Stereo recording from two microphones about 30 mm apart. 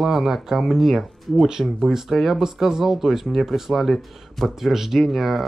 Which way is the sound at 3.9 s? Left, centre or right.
Centre.